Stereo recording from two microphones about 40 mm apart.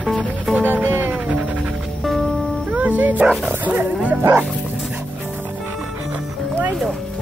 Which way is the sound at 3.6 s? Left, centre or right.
Right.